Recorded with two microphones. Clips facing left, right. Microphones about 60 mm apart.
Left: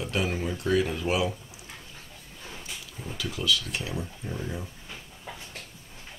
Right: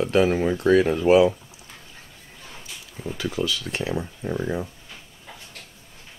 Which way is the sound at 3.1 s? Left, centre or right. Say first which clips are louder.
Right 2 dB; right.